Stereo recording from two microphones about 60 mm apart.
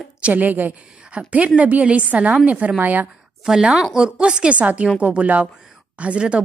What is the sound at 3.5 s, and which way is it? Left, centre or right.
A woman's voice, centre.